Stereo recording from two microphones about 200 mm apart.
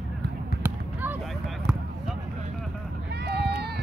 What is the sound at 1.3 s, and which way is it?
Basketball bounce, centre (ahead or behind).